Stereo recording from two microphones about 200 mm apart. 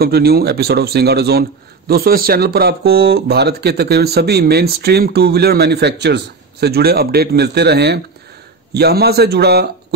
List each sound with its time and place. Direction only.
0.0 s speech: 50° right (ahead or behind)